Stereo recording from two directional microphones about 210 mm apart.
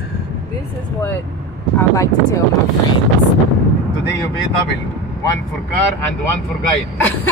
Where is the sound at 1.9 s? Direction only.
15° left (ahead or behind).